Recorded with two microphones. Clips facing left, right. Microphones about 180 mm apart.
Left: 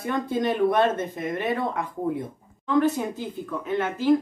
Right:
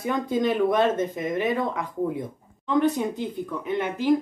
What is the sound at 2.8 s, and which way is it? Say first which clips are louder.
Speech: right 1 dB; 20° right (ahead or behind).